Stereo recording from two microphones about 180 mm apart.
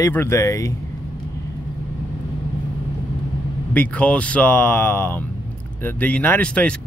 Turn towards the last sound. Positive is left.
turn(degrees=5)  # may be behind; listen again after turning